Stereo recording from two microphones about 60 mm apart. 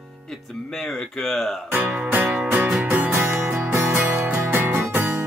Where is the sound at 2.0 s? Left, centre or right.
Right.